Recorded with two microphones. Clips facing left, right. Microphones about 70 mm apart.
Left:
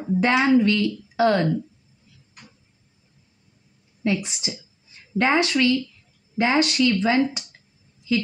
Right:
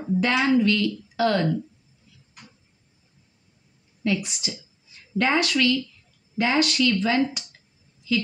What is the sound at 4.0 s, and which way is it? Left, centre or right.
Speech, left.